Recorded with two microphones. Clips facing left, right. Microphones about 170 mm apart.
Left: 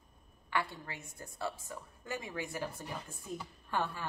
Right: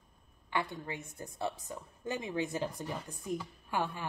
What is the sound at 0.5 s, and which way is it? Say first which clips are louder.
A woman's voice: right 1 dB; 20° right (ahead or behind).